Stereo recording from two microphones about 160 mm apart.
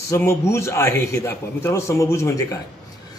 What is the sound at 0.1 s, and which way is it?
Speech, 15° left (ahead or behind).